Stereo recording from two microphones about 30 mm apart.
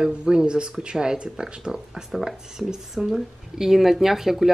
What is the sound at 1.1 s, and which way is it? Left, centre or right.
Speech, right.